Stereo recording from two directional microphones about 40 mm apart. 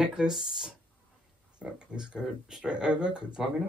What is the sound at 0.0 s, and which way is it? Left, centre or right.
Speech, right.